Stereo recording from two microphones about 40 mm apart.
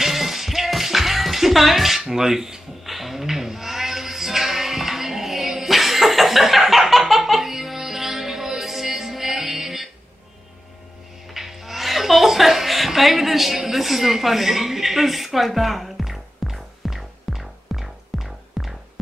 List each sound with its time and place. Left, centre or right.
0.0 s music: centre
2.9 s a sound: centre
11.2 s chuckle: centre